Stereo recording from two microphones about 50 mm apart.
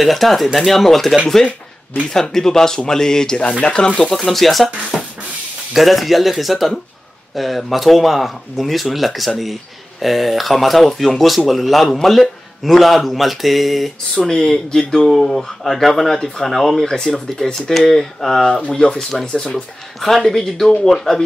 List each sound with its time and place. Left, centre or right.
0.0 s speech: centre
4.0 s speech: centre
4.9 s beatboxing: centre
5.7 s speech: centre
14.1 s speech: centre
19.5 s speech: centre